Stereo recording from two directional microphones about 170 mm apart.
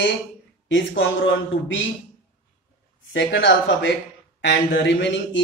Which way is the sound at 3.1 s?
90° left.